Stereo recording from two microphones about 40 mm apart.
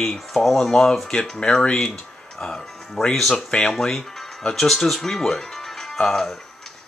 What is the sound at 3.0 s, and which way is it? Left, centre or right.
Speech, left.